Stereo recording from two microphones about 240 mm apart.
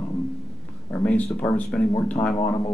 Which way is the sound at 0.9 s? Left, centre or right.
Centre.